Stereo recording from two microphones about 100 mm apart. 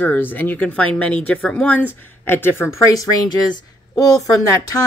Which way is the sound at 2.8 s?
35° left (ahead or behind).